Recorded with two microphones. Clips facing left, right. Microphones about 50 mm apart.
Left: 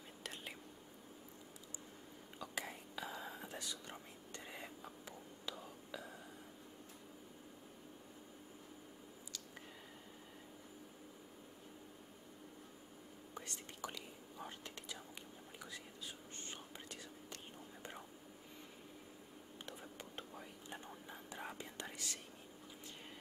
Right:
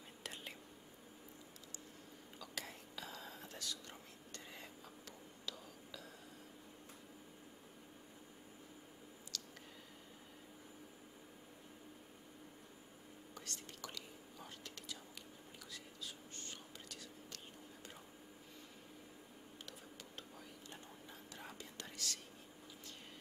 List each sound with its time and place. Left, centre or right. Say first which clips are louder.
0.2 s whispering: left 1 dB; centre
2.3 s whispering: left 4 dB; centre
13.3 s whispering: left 2 dB; left
20.2 s whispering: left 3 dB; left